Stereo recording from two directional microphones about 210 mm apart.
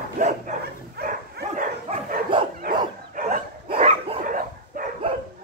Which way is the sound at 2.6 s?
40° right (ahead or behind).